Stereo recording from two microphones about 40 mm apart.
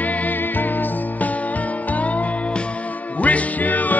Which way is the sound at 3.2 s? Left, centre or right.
Left.